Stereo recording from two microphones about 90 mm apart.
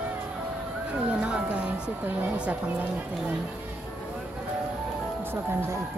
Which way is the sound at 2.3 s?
15° right (ahead or behind).